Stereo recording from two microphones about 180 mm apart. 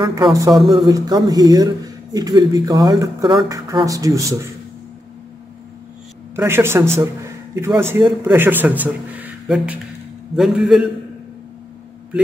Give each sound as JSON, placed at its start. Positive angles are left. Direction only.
{"t": 0.0, "sound": "speech", "side_deg": -20}
{"t": 6.3, "sound": "a man's voice", "side_deg": -15}